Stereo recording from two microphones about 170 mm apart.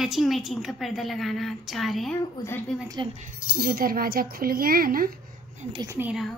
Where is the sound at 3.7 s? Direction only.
60° right (ahead or behind).